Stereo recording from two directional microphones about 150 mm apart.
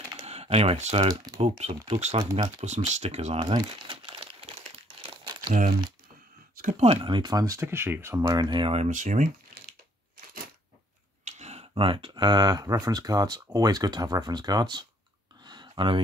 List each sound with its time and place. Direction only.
0.2 s computer keyboard: 45° right (ahead or behind)
1.0 s speech: 25° right (ahead or behind)
2.6 s speech: 50° right (ahead or behind)
3.3 s crumpling: 30° right (ahead or behind)
5.5 s speech: 60° right (ahead or behind)
6.8 s speech: 40° right (ahead or behind); by 8.3 s 15° right (ahead or behind)
8.3 s speech: 30° right (ahead or behind); by 9.3 s 55° right (ahead or behind)
11.2 s speech: 50° right (ahead or behind); by 14.9 s 30° right (ahead or behind)
15.4 s a sound: 30° right (ahead or behind)